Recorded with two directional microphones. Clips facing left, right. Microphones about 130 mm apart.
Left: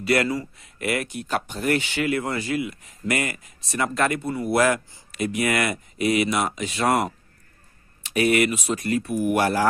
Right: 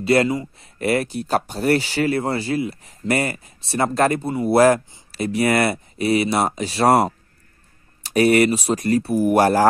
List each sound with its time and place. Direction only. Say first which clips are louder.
0.0 s speech: right 5 dB; 25° right (ahead or behind)